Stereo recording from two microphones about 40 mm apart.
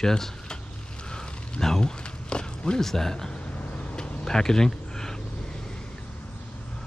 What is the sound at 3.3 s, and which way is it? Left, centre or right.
Vehicle, left.